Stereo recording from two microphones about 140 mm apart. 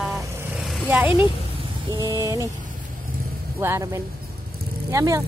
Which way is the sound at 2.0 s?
25° right (ahead or behind).